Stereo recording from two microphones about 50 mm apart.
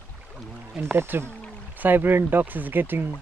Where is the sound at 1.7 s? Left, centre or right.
Right.